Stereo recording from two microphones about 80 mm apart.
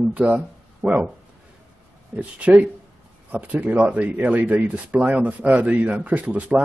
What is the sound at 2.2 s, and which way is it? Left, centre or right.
Speech, centre.